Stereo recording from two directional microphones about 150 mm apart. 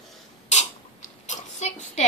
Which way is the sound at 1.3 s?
50° left (ahead or behind).